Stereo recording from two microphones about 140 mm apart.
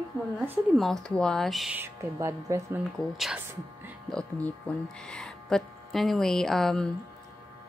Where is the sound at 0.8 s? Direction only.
Centre (ahead or behind).